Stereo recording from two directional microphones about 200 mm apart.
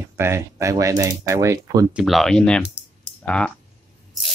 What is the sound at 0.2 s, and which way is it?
Speech, 15° right (ahead or behind).